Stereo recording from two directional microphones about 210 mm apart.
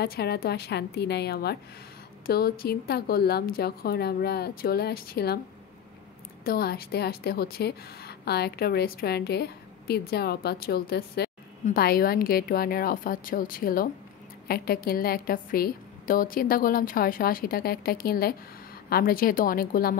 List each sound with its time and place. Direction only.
0.0 s a woman's voice: 50° left (ahead or behind)
6.4 s a woman's voice: 45° left (ahead or behind)